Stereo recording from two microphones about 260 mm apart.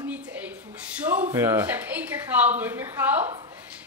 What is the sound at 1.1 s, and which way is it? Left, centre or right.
Speech, centre.